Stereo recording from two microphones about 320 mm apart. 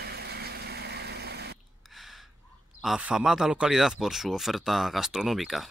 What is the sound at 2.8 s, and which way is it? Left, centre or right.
Speech, centre.